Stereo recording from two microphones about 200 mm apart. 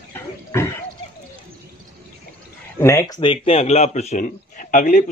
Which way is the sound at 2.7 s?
15° left (ahead or behind).